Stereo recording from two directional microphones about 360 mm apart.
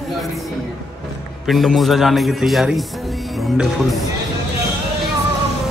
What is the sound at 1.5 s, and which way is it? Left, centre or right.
A man's voice, centre.